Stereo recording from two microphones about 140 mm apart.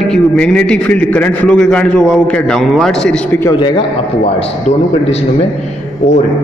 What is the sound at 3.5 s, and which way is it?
Speech, 35° left (ahead or behind).